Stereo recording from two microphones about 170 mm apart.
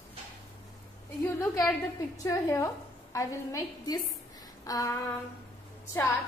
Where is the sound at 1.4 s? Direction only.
15° left (ahead or behind).